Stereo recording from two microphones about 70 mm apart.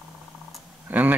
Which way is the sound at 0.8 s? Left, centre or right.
Right.